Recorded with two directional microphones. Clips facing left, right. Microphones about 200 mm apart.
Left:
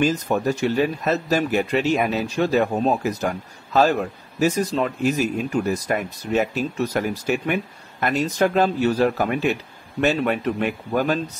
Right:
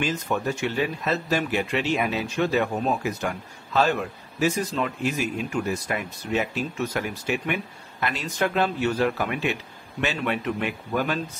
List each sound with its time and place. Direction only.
0.0 s speech: 40° left (ahead or behind)